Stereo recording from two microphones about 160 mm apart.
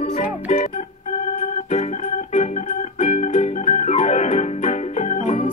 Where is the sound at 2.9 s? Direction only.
40° left (ahead or behind).